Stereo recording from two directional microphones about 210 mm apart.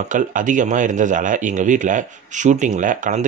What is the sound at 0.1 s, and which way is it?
Speech, 40° right (ahead or behind).